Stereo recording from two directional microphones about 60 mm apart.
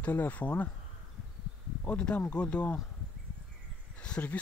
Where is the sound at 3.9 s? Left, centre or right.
Centre.